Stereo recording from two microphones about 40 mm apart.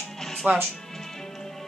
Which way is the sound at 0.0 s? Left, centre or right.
Centre.